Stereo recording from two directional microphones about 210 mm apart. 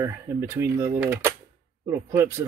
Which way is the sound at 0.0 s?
15° right (ahead or behind).